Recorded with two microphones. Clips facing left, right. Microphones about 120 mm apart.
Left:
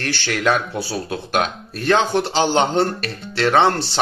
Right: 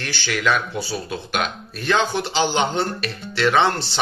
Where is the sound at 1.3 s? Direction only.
40° left (ahead or behind).